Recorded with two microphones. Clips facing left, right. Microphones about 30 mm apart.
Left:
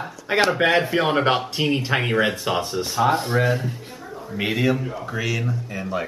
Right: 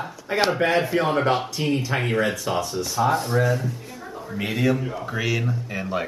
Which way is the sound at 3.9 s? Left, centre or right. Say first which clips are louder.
Even; centre.